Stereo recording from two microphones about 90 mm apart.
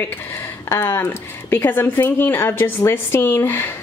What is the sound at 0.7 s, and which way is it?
Speech, 25° left (ahead or behind).